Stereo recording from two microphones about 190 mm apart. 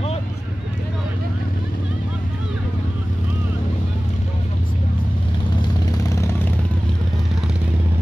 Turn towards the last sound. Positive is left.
turn(degrees=15)  # may be behind; listen again after turning